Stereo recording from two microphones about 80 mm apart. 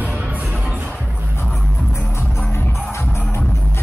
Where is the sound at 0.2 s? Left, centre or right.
Centre.